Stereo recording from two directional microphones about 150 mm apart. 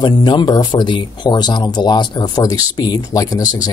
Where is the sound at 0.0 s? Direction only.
30° left (ahead or behind).